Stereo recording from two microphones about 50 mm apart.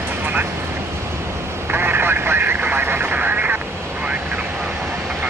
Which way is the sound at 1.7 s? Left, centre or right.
Right.